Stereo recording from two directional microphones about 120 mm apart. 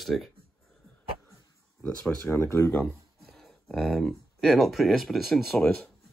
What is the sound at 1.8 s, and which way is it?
Speech, 15° left (ahead or behind).